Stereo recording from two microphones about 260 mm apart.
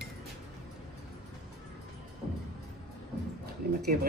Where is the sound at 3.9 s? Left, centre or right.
Right.